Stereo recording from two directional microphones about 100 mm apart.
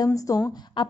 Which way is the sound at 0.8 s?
50° left (ahead or behind).